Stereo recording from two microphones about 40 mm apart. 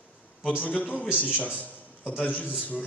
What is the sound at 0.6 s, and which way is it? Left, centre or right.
Speech, left.